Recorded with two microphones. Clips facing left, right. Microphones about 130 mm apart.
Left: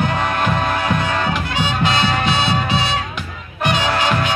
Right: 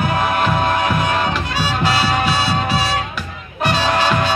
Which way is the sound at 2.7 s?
20° left (ahead or behind).